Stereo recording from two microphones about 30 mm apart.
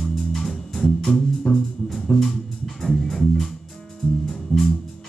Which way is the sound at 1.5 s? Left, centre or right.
Left.